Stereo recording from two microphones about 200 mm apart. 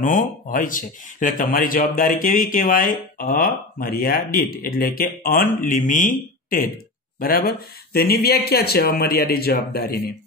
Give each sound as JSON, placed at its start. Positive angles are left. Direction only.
{"t": 0.0, "sound": "speech", "side_deg": 40}